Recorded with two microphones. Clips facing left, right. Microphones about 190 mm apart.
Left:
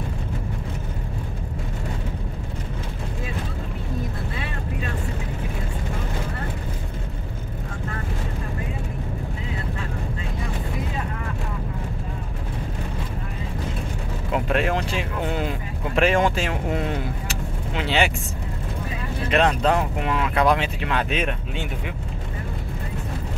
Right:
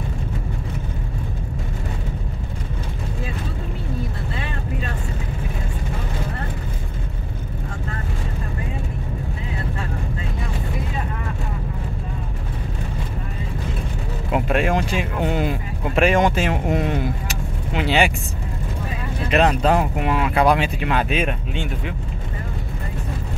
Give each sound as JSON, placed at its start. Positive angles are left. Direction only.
{"t": 14.3, "sound": "vehicle", "side_deg": -10}
{"t": 16.0, "sound": "speech", "side_deg": -15}
{"t": 17.3, "sound": "vehicle", "side_deg": -10}
{"t": 19.3, "sound": "speech", "side_deg": -10}